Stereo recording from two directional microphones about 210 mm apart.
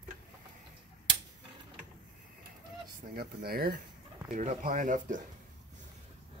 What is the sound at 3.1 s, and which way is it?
Speech, 45° right (ahead or behind).